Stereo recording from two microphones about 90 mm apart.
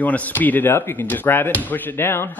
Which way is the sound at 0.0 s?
20° left (ahead or behind).